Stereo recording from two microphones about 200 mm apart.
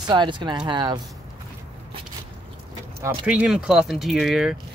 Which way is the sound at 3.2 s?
5° right (ahead or behind).